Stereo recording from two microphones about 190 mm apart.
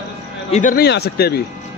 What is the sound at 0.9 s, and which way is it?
Speech, 55° left (ahead or behind).